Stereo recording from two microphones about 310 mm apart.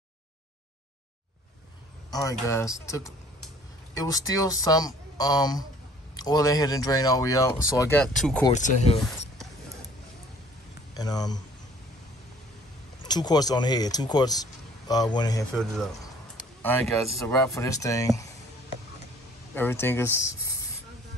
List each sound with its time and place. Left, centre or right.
2.0 s speech: centre
8.5 s speech: left
11.0 s speech: centre
13.1 s speech: centre
15.5 s speech: centre
19.5 s speech: centre